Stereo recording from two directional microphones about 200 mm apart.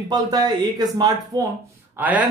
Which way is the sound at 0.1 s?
20° right (ahead or behind).